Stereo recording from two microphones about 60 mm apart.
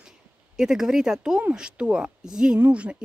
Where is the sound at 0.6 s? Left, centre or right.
Centre.